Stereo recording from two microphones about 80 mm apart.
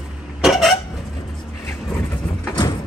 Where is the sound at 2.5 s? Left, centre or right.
Left.